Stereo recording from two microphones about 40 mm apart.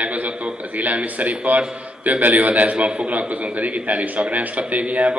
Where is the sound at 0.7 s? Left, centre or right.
Right.